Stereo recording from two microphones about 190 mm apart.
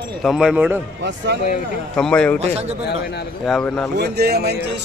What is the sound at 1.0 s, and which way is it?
Speech, 70° right (ahead or behind).